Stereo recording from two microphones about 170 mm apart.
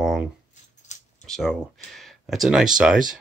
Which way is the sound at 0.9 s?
45° left (ahead or behind).